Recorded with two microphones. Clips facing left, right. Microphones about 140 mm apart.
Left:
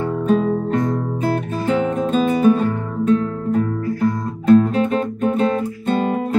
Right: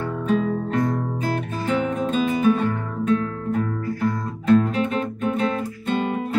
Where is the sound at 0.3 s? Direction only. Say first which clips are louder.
Left 4 dB; 40° left (ahead or behind).